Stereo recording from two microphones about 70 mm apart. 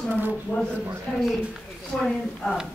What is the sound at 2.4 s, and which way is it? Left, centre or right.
Speech, centre.